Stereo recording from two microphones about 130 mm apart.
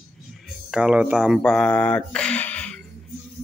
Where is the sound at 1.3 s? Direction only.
5° left (ahead or behind).